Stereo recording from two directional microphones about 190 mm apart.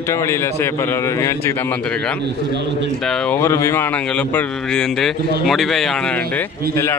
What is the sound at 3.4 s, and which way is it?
Speech, 15° left (ahead or behind).